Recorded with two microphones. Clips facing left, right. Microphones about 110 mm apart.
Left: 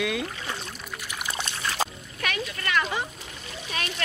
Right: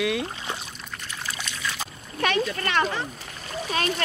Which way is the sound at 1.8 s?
90° left.